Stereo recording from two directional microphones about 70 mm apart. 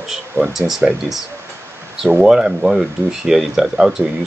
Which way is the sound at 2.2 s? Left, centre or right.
Centre.